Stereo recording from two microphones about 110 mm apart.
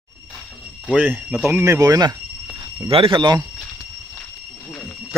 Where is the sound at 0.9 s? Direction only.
15° right (ahead or behind); by 2.1 s 35° right (ahead or behind).